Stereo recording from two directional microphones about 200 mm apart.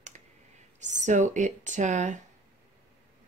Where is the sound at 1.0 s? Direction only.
35° right (ahead or behind).